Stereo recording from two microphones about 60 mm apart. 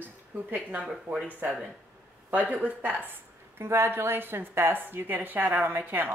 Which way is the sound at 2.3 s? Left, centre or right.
Right.